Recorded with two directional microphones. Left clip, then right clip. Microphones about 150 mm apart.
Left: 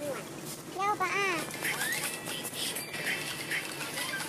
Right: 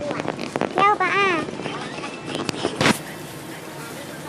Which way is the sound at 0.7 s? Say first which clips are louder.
Right 12 dB; 15° right (ahead or behind).